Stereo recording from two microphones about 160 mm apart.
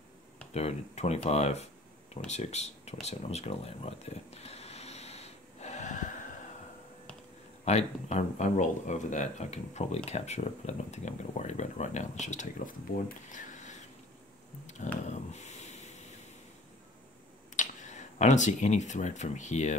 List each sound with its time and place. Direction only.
0.5 s speech: 40° left (ahead or behind)
2.2 s a sound: 45° left (ahead or behind)
7.6 s speech: 45° left (ahead or behind)
13.3 s a sound: 50° left (ahead or behind)
15.0 s hiss: 45° left (ahead or behind)
17.6 s speech: 50° left (ahead or behind)